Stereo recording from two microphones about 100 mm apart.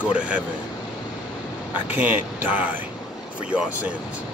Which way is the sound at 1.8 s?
15° right (ahead or behind).